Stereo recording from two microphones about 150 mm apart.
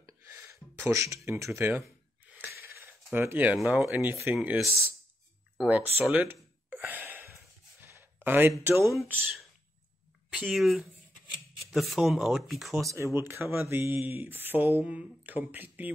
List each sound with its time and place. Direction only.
0.0 s a sound: 20° right (ahead or behind)
3.5 s speech: 10° right (ahead or behind)
6.0 s a sound: 10° right (ahead or behind)
9.0 s speech: 10° right (ahead or behind)
10.4 s speech: centre (ahead or behind)
12.8 s speech: 20° right (ahead or behind)